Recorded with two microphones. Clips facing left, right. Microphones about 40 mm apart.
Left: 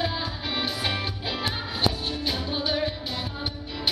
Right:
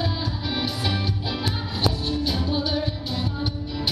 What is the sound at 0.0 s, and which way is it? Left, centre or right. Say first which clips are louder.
Music: right 1 dB; centre.